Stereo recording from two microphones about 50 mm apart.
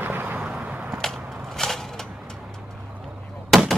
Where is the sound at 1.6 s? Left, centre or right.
Centre.